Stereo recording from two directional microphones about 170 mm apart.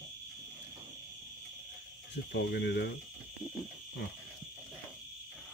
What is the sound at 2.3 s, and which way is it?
Speech, 90° left.